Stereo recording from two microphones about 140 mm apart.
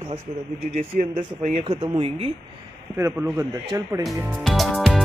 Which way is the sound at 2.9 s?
15° right (ahead or behind).